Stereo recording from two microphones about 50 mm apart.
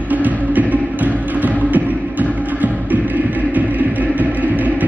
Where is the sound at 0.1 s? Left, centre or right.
Right.